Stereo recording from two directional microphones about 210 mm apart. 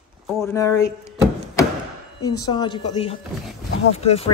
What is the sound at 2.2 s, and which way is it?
Speech, 20° left (ahead or behind).